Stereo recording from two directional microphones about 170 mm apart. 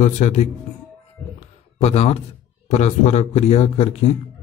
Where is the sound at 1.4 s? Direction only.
40° left (ahead or behind).